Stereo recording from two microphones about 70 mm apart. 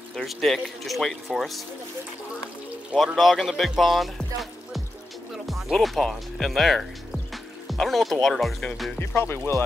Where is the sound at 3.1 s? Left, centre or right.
Centre.